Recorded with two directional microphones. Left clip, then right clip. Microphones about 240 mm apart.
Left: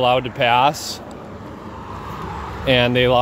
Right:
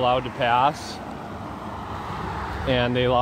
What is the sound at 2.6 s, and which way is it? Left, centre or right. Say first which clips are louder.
Speech: left 7 dB; left.